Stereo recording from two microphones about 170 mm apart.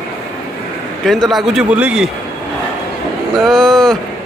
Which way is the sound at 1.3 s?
Centre (ahead or behind).